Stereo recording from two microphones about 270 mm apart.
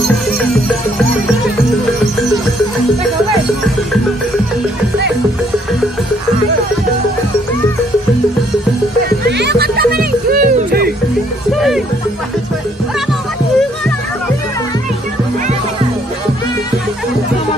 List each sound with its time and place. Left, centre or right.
9.4 s music: right
11.5 s music: centre